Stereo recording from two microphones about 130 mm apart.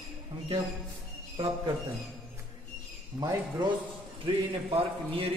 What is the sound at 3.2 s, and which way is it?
Speech, 35° right (ahead or behind).